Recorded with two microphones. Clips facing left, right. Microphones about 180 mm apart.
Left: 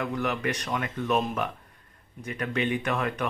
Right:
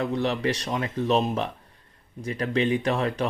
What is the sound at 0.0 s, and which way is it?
Speech, 30° right (ahead or behind).